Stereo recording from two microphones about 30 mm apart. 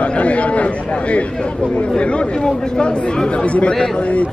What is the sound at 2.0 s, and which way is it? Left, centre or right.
Speech, left.